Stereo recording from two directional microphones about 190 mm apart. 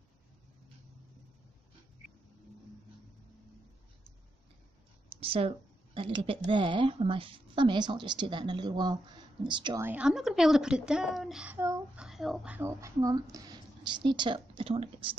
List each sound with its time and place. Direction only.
5.1 s speech: 30° right (ahead or behind)
9.8 s a child's voice: 5° right (ahead or behind); by 15.0 s 30° right (ahead or behind)